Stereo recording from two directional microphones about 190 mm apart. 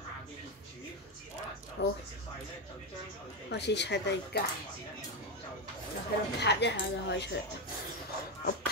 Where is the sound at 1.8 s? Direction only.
65° left (ahead or behind).